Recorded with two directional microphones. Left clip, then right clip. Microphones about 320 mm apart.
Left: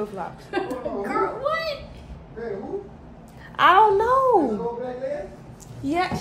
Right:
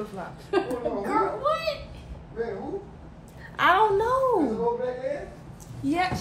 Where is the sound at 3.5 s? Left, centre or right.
Centre.